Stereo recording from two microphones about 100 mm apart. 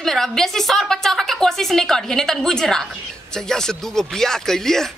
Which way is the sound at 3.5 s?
5° left (ahead or behind).